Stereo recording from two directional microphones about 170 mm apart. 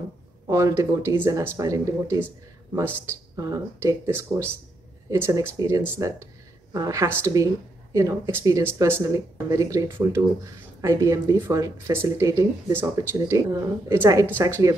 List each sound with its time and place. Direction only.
0.5 s a woman's voice: 20° right (ahead or behind)